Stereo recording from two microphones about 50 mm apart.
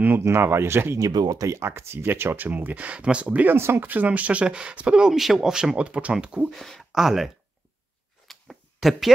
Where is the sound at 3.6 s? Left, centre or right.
Right.